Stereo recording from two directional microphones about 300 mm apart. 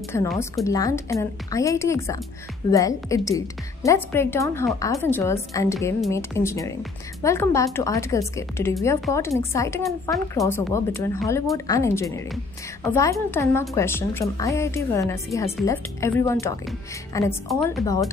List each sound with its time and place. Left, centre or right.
0.1 s a woman's voice: centre